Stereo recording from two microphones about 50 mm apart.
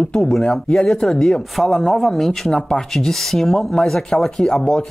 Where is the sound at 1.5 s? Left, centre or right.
Centre.